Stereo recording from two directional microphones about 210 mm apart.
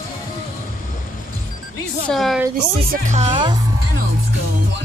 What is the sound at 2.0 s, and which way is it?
Speech, centre (ahead or behind).